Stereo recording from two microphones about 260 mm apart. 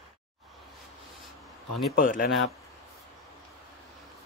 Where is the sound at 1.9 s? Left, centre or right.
Left.